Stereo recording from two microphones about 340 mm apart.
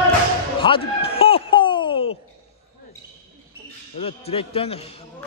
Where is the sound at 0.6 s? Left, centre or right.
Centre.